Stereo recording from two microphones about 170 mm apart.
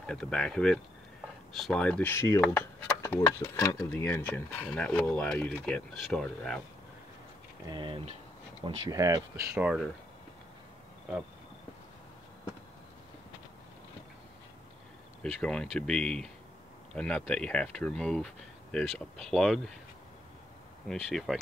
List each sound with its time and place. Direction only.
0.0 s speech: 5° left (ahead or behind)
7.7 s speech: 30° right (ahead or behind)
8.6 s speech: 20° right (ahead or behind)
9.6 s speech: 5° right (ahead or behind)
15.4 s speech: 5° left (ahead or behind)
20.8 s speech: centre (ahead or behind)